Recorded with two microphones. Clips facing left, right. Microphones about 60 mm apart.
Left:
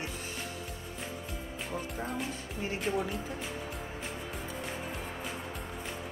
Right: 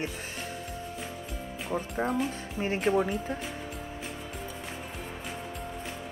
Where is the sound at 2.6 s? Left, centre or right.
Right.